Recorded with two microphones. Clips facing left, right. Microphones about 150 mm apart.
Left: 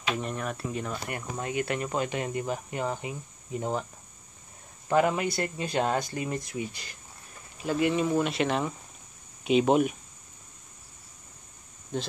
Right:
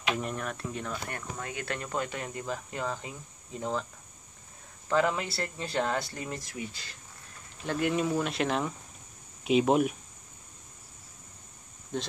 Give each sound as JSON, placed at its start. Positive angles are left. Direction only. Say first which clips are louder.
{"t": 0.1, "sound": "speech", "louder": "left 1 dB", "side_deg": 0}
{"t": 4.8, "sound": "speech", "louder": "left 3 dB", "side_deg": 15}
{"t": 7.5, "sound": "speech", "louder": "left 3 dB", "side_deg": 5}
{"t": 11.9, "sound": "speech", "louder": "left 2 dB", "side_deg": 0}